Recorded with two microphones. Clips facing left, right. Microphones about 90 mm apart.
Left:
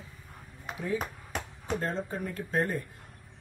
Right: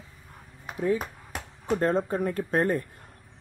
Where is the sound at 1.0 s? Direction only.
5° right (ahead or behind).